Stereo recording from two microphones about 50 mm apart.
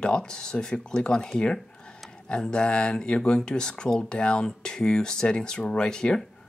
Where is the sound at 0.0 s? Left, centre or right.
Centre.